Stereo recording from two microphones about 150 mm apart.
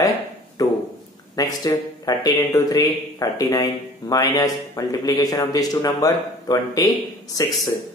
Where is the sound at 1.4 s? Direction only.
25° left (ahead or behind).